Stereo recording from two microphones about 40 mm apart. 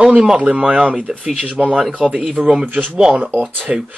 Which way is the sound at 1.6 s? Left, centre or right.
Centre.